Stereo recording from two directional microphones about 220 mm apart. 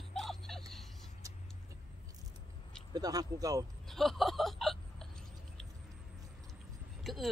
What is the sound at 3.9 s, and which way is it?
Hiccup, centre (ahead or behind).